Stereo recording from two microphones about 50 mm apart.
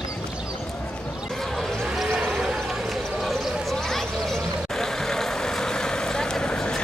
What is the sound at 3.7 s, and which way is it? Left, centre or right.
Vehicle, centre.